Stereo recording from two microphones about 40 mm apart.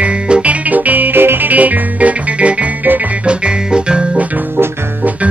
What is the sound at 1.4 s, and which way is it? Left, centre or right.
Music, right.